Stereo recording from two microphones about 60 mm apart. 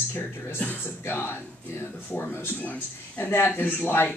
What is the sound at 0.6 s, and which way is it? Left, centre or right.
Speech, left.